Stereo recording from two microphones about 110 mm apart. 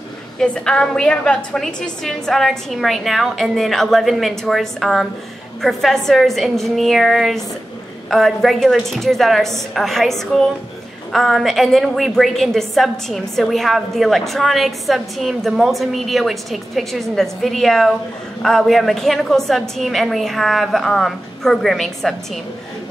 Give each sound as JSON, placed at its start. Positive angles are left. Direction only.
{"t": 0.4, "sound": "a woman's voice", "side_deg": 5}